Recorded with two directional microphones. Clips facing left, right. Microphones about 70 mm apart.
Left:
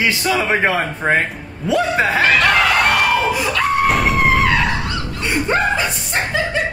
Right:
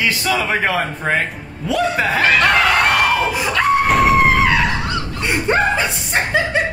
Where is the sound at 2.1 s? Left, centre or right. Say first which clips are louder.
Right 1 dB; centre.